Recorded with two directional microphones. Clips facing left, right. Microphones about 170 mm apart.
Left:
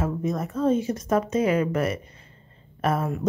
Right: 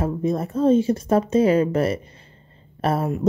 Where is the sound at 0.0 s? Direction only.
30° right (ahead or behind).